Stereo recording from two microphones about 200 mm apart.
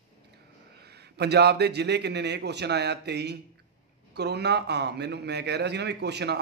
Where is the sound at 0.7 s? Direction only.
55° right (ahead or behind).